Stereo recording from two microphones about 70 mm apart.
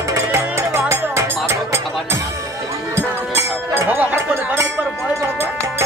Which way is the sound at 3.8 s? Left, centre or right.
Right.